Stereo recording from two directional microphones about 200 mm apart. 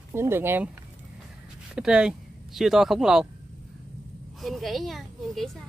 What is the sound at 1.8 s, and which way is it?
Speech, 5° right (ahead or behind).